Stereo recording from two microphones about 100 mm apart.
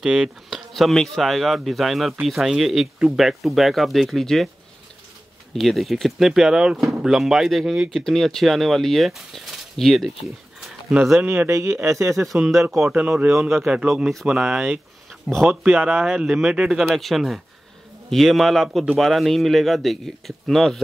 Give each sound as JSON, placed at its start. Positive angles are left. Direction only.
{"t": 0.0, "sound": "speech", "side_deg": -5}
{"t": 5.6, "sound": "speech", "side_deg": 0}
{"t": 11.1, "sound": "speech", "side_deg": -25}
{"t": 12.9, "sound": "speech", "side_deg": -15}
{"t": 13.3, "sound": "speech", "side_deg": 0}